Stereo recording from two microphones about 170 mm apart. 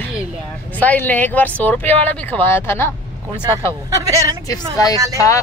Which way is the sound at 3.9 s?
20° right (ahead or behind).